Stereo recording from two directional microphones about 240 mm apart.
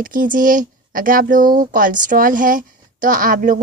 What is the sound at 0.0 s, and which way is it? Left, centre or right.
A woman's voice, right.